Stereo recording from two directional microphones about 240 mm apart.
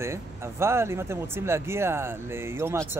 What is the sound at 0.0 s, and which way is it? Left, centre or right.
Speech, centre.